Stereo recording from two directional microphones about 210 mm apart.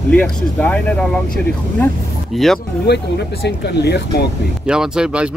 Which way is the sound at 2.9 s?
50° left (ahead or behind).